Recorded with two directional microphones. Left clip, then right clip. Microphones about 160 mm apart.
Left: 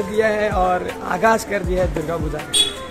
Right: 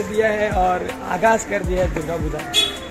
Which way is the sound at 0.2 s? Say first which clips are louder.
Even; 15° left (ahead or behind).